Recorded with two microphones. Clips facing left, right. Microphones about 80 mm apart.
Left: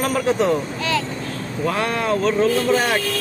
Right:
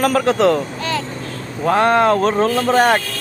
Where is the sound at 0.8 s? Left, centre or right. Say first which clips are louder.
Even; right.